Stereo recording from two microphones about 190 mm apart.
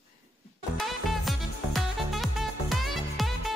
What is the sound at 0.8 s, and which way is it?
Music, centre (ahead or behind).